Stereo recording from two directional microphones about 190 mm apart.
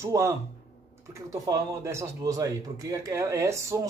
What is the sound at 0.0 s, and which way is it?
Speech, 15° right (ahead or behind).